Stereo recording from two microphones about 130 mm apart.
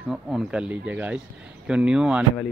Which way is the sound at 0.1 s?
5° right (ahead or behind).